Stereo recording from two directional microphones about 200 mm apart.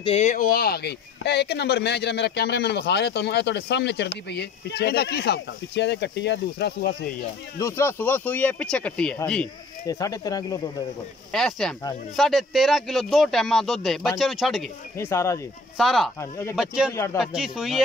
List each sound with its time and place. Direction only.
0.0 s speech: 35° left (ahead or behind); by 7.2 s 55° left (ahead or behind)
7.5 s speech: 15° left (ahead or behind)
9.8 s speech: 15° left (ahead or behind)
11.3 s speech: centre (ahead or behind)
15.0 s speech: 15° left (ahead or behind)
15.8 s speech: centre (ahead or behind)
16.2 s speech: 15° left (ahead or behind)
16.5 s speech: 5° right (ahead or behind)
16.9 s speech: 15° left (ahead or behind)
17.2 s speech: 5° right (ahead or behind)